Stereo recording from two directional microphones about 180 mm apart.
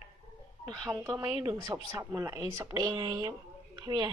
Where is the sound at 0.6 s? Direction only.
5° left (ahead or behind).